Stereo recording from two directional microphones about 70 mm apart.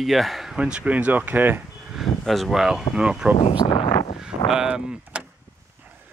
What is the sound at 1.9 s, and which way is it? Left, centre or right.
Speech, centre.